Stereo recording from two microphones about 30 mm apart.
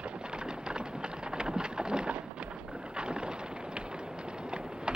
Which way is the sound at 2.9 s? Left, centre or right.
Right.